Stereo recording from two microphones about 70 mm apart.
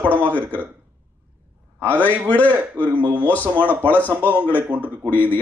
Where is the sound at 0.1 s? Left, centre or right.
Left.